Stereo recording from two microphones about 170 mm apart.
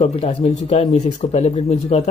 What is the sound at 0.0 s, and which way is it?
Speech, 35° left (ahead or behind).